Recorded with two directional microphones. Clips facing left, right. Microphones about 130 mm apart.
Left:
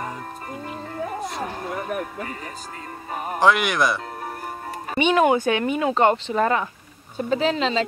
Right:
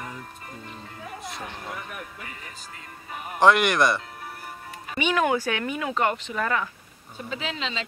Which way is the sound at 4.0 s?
45° left (ahead or behind).